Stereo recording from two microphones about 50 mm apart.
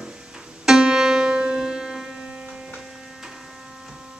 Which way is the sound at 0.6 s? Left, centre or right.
Centre.